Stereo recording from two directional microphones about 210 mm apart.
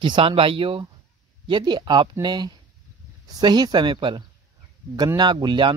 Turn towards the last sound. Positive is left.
turn(degrees=-20)  # may be behind; listen again after turning